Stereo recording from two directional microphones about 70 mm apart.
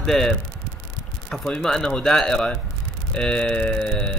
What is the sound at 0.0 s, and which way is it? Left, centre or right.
Speech, centre.